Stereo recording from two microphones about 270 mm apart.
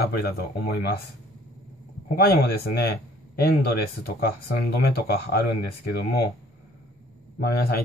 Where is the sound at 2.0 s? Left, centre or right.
Left.